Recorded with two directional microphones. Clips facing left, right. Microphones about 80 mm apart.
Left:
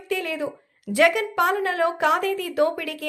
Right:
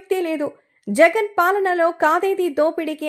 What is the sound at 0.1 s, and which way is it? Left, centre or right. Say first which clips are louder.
Speech: right 6 dB; right.